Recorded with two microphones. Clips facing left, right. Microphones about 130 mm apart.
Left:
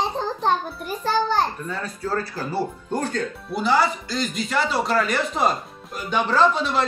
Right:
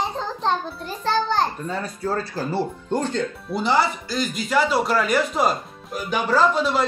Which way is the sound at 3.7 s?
5° right (ahead or behind).